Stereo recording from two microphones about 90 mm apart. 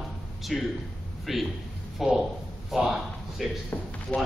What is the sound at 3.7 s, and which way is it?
Speech, 20° left (ahead or behind).